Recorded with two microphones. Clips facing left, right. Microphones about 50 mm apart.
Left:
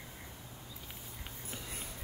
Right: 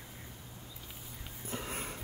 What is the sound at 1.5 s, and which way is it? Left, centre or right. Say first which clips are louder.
Sniff: right 8 dB; right.